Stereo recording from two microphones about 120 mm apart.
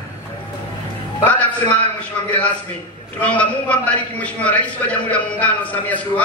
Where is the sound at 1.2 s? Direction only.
15° left (ahead or behind).